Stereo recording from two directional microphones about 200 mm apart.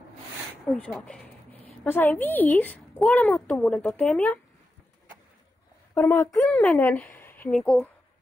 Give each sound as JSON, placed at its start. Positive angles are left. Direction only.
{"t": 0.7, "sound": "a sound", "side_deg": 5}
{"t": 1.9, "sound": "a woman's voice", "side_deg": 10}
{"t": 5.9, "sound": "a woman's voice", "side_deg": 10}